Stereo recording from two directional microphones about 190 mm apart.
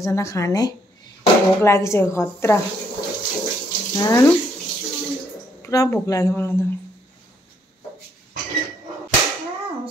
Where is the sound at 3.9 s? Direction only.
15° left (ahead or behind).